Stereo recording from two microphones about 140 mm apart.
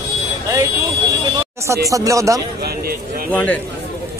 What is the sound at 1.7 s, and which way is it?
Speech, 25° right (ahead or behind).